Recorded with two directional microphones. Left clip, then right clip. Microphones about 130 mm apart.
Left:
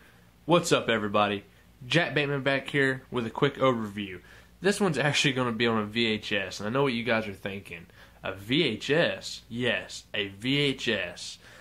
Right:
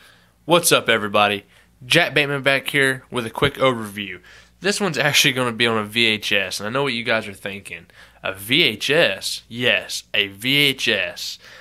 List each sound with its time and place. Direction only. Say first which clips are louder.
0.5 s speech: right 8 dB; 20° right (ahead or behind)
6.8 s speech: right 5 dB; 10° right (ahead or behind)
8.2 s speech: right 10 dB; 25° right (ahead or behind)